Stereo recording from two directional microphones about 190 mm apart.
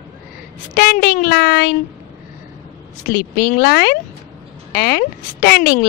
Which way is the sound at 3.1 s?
50° left (ahead or behind).